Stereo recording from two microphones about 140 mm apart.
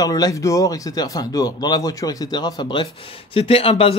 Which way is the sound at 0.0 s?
25° left (ahead or behind).